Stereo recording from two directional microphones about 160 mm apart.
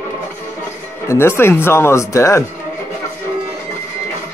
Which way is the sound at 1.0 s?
15° left (ahead or behind).